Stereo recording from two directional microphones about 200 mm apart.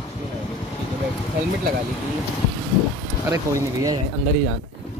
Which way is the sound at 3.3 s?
15° right (ahead or behind).